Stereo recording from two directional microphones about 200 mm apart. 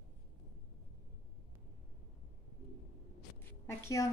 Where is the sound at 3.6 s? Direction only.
15° left (ahead or behind).